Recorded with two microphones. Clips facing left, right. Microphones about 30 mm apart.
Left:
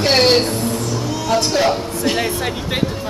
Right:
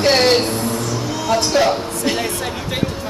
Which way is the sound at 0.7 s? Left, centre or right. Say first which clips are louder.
Even; centre.